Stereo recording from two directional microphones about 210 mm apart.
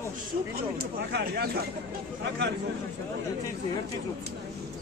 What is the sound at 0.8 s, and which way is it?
Speech, 50° right (ahead or behind).